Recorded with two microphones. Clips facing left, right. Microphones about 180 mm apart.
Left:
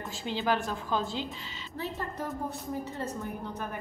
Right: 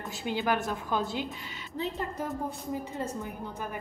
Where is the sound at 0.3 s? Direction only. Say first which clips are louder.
Right 1 dB; 10° right (ahead or behind).